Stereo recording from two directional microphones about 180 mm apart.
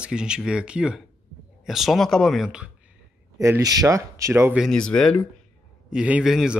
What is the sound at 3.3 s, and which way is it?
Speech, 15° right (ahead or behind).